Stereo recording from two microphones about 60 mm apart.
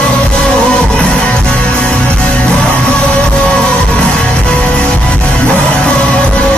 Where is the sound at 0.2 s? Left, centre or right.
Centre.